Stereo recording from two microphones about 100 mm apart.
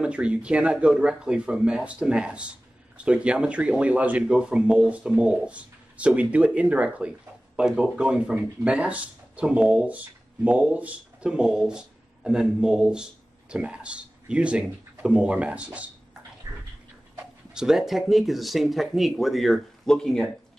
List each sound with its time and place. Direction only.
0.0 s speech: 10° right (ahead or behind)
16.5 s a sound: 35° right (ahead or behind)
17.6 s speech: 5° right (ahead or behind)